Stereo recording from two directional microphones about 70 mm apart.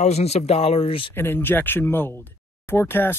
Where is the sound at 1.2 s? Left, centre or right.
Left.